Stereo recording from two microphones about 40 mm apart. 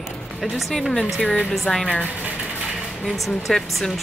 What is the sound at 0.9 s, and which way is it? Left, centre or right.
Speech, left.